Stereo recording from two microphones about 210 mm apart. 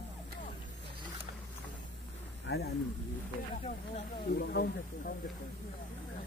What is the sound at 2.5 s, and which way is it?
Speech, 55° left (ahead or behind).